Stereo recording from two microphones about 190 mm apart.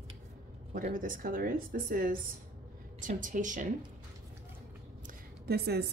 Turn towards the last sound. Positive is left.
turn(degrees=-60)  # may be behind; listen again after turning